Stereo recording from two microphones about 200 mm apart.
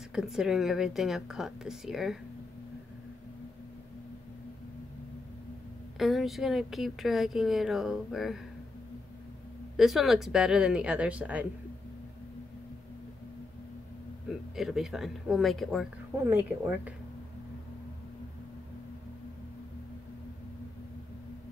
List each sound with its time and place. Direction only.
0.1 s speech: centre (ahead or behind)
5.9 s speech: centre (ahead or behind)
9.8 s speech: centre (ahead or behind)
14.5 s speech: centre (ahead or behind)
16.3 s speech: 10° right (ahead or behind)